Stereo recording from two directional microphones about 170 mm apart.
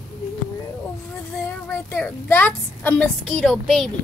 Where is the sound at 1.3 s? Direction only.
10° left (ahead or behind).